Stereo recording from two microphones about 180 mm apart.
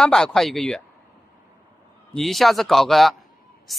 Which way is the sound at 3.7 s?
Centre (ahead or behind).